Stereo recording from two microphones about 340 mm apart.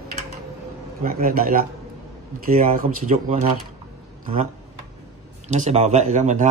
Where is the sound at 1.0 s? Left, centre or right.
Right.